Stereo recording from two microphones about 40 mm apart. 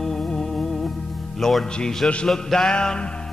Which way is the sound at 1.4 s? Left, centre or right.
Centre.